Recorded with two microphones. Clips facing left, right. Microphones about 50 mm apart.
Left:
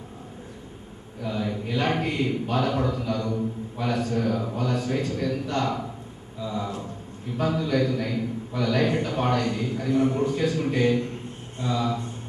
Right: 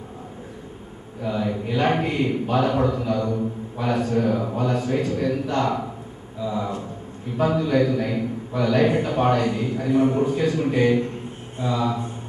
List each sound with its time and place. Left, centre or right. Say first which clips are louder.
1.2 s a man's voice: right 4 dB; centre